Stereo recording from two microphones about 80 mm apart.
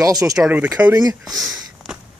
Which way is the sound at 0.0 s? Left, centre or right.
Right.